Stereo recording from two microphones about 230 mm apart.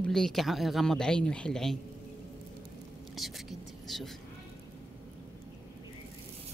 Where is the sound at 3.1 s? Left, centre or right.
Centre.